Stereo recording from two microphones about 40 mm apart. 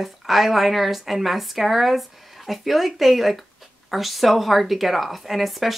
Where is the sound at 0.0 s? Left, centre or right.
Centre.